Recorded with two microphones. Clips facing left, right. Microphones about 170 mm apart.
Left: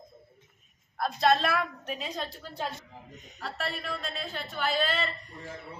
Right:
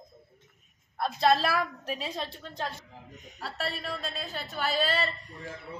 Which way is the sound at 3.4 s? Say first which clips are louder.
Even; 30° right (ahead or behind).